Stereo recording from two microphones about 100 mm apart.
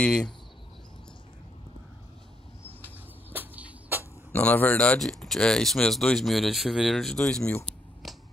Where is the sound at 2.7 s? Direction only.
20° left (ahead or behind).